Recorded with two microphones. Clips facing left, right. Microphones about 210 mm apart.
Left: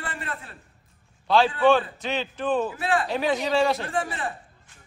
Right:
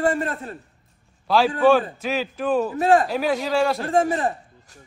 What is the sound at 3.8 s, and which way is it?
Speech, 45° right (ahead or behind).